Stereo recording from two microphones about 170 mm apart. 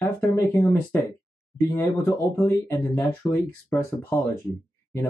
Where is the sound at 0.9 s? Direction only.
15° left (ahead or behind).